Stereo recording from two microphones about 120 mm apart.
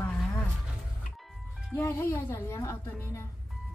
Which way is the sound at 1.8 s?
20° left (ahead or behind).